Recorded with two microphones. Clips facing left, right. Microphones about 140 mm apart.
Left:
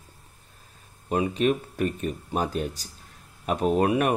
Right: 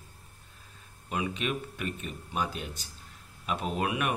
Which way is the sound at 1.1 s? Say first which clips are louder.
Left 9 dB; 40° left (ahead or behind).